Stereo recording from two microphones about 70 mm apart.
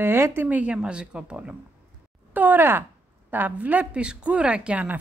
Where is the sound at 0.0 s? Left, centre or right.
Right; by 1.6 s centre.